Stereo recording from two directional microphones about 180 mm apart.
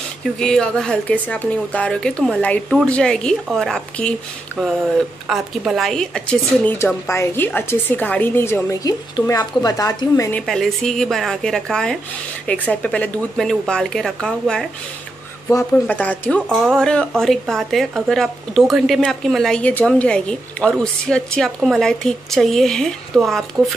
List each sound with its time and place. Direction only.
0.4 s a woman's voice: 5° left (ahead or behind)
5.3 s speech: 5° right (ahead or behind); by 10.4 s 15° left (ahead or behind)
10.4 s a woman's voice: centre (ahead or behind)